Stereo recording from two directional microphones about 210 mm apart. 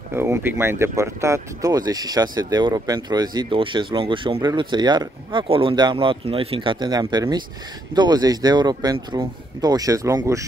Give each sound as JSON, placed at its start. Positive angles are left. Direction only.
{"t": 0.1, "sound": "speech", "side_deg": -10}